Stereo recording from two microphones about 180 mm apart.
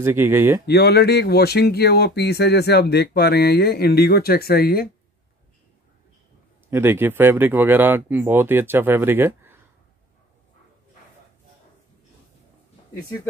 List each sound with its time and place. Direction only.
0.0 s speech: 10° right (ahead or behind)
0.7 s speech: 60° left (ahead or behind)
6.7 s speech: 10° right (ahead or behind)